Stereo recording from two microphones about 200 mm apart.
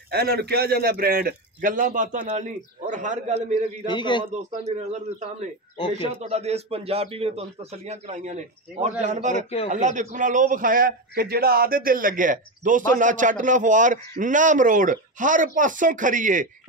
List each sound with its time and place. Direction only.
0.1 s a man's voice: 55° right (ahead or behind); by 3.3 s 40° right (ahead or behind)
3.8 s a man's voice: 25° left (ahead or behind)
4.4 s a man's voice: 35° right (ahead or behind)
6.2 s a man's voice: 30° right (ahead or behind)